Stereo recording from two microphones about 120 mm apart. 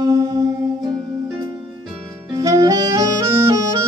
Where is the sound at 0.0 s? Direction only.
30° right (ahead or behind).